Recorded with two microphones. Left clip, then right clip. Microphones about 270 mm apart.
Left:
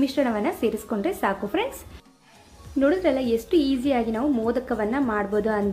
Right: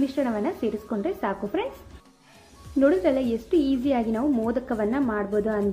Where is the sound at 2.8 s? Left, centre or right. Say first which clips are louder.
Even; centre.